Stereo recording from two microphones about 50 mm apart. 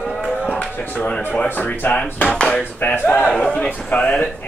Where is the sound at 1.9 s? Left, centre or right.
Left.